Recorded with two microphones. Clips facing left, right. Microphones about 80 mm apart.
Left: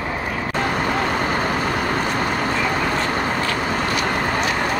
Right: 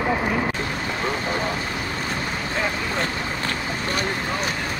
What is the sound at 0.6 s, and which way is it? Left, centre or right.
Vehicle, left.